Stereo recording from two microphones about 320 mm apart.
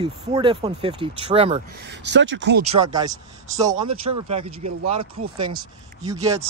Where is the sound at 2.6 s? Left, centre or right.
Centre.